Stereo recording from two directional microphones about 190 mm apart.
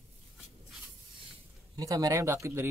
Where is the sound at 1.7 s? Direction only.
20° right (ahead or behind).